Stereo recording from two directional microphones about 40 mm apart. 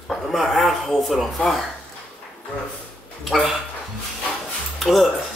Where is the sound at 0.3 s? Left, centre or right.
Centre.